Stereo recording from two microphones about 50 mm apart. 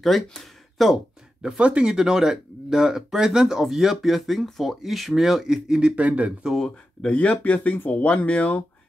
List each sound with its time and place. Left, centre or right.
0.0 s speech: centre
1.6 s speech: right
7.1 s speech: left
8.1 s speech: left